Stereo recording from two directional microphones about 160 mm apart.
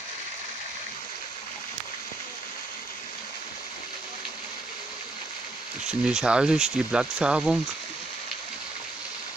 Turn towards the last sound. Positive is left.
turn(degrees=-5)  # may be behind; listen again after turning